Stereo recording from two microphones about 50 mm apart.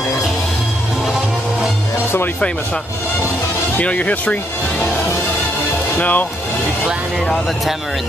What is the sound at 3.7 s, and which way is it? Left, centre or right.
Speech, left.